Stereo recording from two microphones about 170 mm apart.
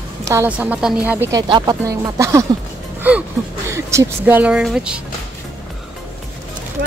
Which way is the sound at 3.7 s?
15° right (ahead or behind).